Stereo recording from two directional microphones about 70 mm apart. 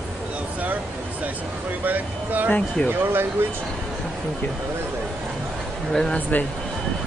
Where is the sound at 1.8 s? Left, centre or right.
Right.